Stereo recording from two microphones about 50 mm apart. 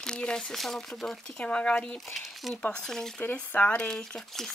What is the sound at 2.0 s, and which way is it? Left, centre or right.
Speech, centre.